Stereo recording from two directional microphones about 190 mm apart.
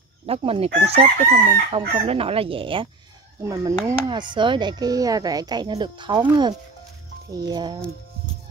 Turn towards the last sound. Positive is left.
turn(degrees=-20)  # may be behind; listen again after turning